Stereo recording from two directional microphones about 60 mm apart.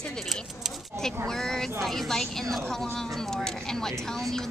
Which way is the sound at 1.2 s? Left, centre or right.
Centre.